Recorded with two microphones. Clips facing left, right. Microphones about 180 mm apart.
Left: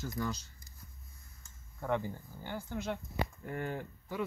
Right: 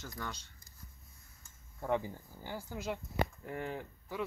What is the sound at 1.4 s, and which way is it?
Cutlery, 10° right (ahead or behind).